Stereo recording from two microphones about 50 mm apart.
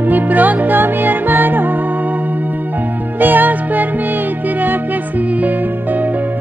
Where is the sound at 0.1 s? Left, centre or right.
Right.